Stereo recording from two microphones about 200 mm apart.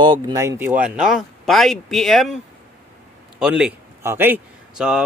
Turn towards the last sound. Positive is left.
turn(degrees=-5)  # may be behind; listen again after turning